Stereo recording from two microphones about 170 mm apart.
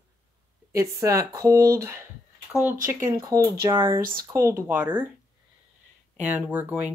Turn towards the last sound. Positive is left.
turn(degrees=-10)  # may be behind; listen again after turning